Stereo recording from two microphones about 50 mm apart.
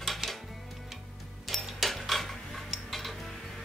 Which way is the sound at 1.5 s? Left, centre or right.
Centre.